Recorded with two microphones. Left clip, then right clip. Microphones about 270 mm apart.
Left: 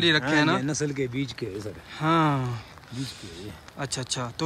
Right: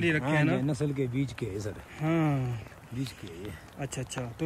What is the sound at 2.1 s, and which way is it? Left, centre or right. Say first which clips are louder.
Speech: left 6 dB; left.